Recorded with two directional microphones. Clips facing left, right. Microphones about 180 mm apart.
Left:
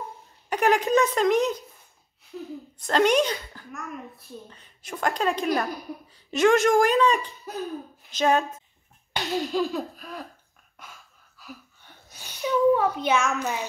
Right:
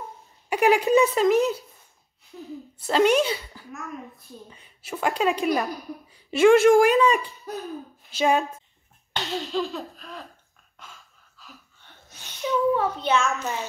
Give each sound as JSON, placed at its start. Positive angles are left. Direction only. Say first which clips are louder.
{"t": 0.5, "sound": "speech", "louder": "right 2 dB", "side_deg": -10}
{"t": 2.8, "sound": "a woman's voice", "louder": "right 1 dB", "side_deg": -5}
{"t": 8.1, "sound": "a woman's voice", "louder": "even", "side_deg": -10}
{"t": 9.1, "sound": "a sound", "louder": "left 1 dB", "side_deg": 15}
{"t": 11.3, "sound": "a sound", "louder": "left 6 dB", "side_deg": 10}
{"t": 13.4, "sound": "speech", "louder": "left 1 dB", "side_deg": 15}